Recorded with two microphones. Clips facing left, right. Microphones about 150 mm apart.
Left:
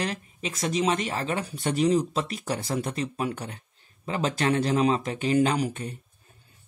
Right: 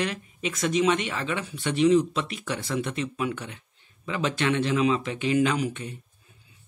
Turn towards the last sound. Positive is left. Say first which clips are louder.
# even
turn(degrees=40)  # may be behind; listen again after turning